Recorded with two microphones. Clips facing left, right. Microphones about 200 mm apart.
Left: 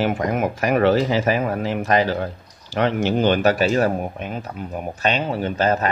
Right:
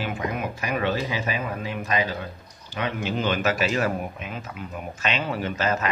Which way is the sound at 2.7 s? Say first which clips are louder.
Left 9 dB; 90° left.